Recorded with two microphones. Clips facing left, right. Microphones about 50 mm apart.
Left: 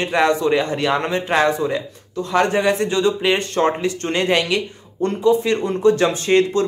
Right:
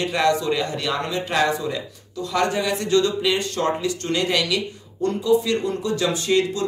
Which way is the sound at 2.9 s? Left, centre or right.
Left.